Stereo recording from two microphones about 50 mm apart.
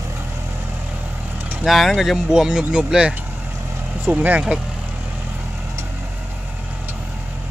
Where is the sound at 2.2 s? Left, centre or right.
Centre.